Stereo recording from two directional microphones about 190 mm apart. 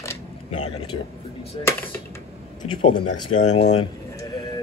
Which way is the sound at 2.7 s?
25° left (ahead or behind).